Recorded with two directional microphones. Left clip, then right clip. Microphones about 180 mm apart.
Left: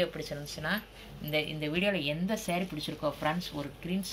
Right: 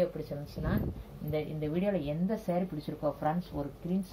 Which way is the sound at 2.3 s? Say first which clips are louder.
Even; 5° right (ahead or behind).